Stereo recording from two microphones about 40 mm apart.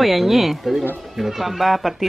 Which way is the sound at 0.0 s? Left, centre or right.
Centre.